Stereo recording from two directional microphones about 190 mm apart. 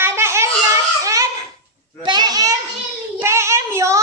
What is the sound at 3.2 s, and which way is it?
Child singing, 15° right (ahead or behind).